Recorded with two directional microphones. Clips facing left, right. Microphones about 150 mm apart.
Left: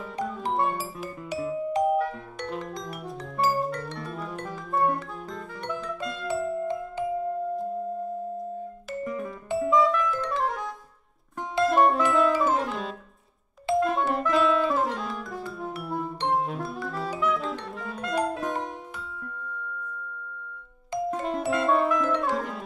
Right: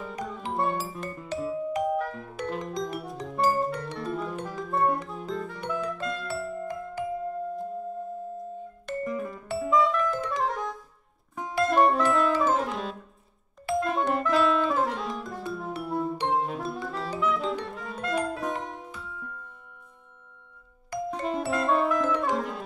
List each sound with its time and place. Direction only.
0.5 s music: centre (ahead or behind)
6.2 s music: 20° left (ahead or behind)
8.9 s music: centre (ahead or behind)
21.1 s glockenspiel: centre (ahead or behind)
21.5 s music: centre (ahead or behind)